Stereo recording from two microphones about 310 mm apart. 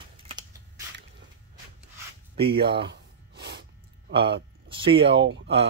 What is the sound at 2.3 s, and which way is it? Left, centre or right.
Speech, centre.